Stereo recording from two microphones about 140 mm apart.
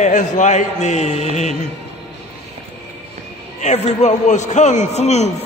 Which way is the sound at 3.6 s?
55° left (ahead or behind).